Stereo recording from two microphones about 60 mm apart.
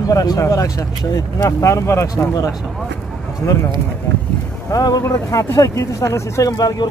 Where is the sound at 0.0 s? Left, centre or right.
Left.